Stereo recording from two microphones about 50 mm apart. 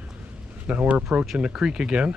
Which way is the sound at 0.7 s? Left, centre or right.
Right.